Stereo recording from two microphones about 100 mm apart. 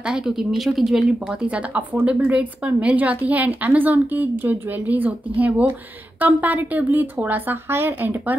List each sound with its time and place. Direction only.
0.0 s speech: 5° right (ahead or behind)